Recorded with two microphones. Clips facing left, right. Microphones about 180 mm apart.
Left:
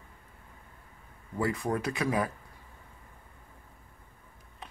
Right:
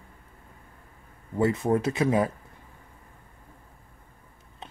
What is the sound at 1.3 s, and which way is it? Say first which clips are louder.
Speech: right 7 dB; 25° right (ahead or behind).